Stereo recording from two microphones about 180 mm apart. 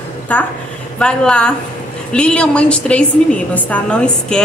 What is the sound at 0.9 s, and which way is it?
A woman's voice, 5° left (ahead or behind).